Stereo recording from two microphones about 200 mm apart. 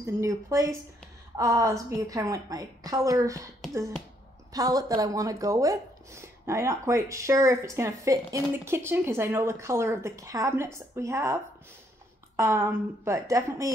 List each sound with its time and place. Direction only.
0.0 s speech: 15° right (ahead or behind)
4.5 s speech: 15° right (ahead or behind)
12.4 s speech: 15° right (ahead or behind)